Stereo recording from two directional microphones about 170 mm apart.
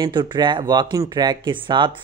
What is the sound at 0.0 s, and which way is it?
Speech, 25° right (ahead or behind).